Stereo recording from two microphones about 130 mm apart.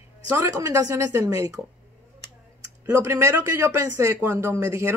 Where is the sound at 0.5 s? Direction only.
30° right (ahead or behind).